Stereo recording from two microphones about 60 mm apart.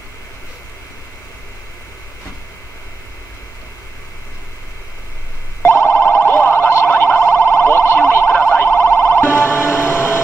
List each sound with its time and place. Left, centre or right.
5.6 s siren: left